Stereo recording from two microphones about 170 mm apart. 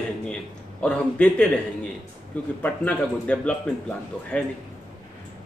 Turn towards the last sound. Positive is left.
turn(degrees=5)  # may be behind; listen again after turning